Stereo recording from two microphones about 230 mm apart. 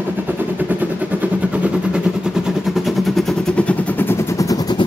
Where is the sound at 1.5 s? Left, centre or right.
Centre.